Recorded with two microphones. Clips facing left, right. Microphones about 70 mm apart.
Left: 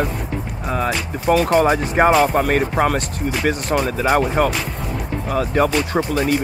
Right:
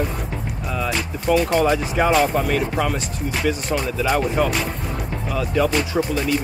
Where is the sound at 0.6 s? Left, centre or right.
Left.